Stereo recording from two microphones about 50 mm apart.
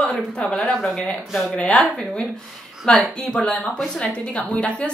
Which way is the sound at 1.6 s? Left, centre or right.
Left.